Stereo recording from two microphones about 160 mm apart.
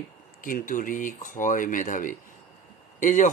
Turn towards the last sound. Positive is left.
turn(degrees=50)  # may be behind; listen again after turning